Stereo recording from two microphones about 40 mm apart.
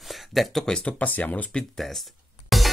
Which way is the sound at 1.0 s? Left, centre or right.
Left.